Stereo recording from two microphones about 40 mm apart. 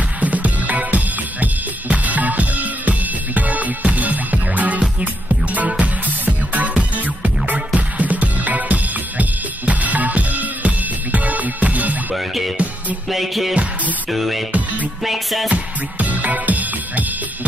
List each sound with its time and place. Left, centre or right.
0.2 s music: right
9.2 s drum kit: right
13.1 s music: centre
15.5 s music: right